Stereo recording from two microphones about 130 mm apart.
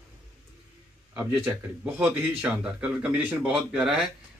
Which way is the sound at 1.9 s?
10° right (ahead or behind).